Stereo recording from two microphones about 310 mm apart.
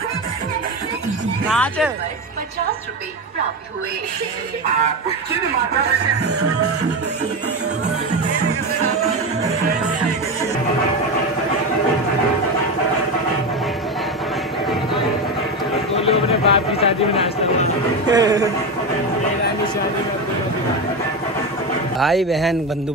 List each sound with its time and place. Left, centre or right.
1.5 s a man's voice: centre
15.9 s speech: centre
18.0 s speech: centre
21.9 s a man's voice: centre